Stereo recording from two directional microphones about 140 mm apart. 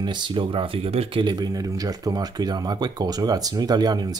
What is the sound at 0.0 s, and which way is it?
Speech, 35° right (ahead or behind).